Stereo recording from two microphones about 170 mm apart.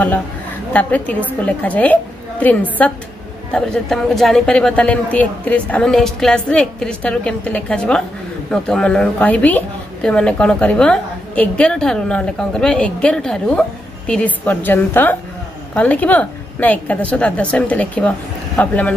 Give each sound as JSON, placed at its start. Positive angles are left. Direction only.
{"t": 0.7, "sound": "a woman's voice", "side_deg": 10}